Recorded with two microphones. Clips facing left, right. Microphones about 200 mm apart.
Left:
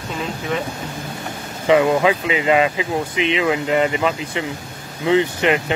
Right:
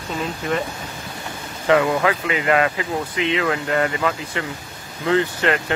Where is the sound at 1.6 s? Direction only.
20° left (ahead or behind).